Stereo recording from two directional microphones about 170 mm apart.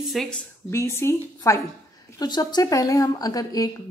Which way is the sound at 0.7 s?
15° left (ahead or behind).